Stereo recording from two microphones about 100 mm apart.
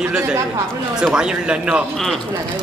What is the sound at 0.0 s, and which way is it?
A man's voice, 10° right (ahead or behind).